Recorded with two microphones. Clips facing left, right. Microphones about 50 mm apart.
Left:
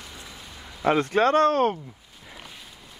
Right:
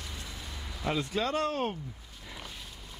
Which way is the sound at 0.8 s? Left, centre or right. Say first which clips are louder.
Left 10 dB; left.